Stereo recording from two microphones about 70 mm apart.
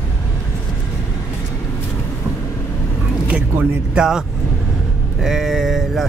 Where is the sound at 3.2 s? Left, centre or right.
Centre.